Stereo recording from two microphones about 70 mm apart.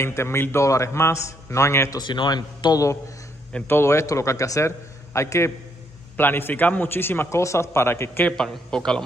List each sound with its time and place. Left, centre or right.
0.0 s a man's voice: left
2.0 s speech: left
3.6 s a man's voice: left
6.1 s a man's voice: left
8.3 s speech: centre